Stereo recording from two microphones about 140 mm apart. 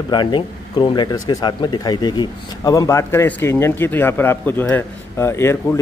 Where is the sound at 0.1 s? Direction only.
35° left (ahead or behind).